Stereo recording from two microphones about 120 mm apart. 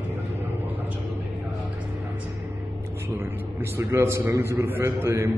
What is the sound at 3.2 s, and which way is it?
A man's voice, 20° right (ahead or behind).